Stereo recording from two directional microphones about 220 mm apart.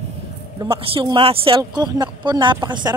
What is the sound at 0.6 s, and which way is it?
Speech, 25° right (ahead or behind).